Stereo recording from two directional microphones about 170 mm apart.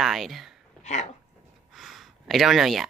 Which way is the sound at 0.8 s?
40° left (ahead or behind).